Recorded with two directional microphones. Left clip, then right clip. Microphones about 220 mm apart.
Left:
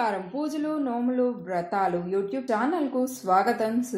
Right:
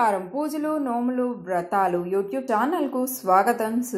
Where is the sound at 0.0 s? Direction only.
15° right (ahead or behind).